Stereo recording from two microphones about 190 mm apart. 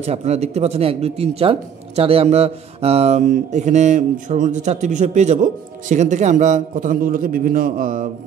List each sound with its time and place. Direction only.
0.0 s speech: 35° right (ahead or behind)